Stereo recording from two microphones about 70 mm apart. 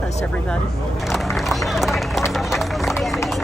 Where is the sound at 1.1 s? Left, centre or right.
Centre.